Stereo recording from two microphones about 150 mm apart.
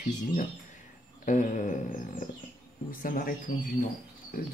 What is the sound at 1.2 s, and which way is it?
Speech, 55° left (ahead or behind).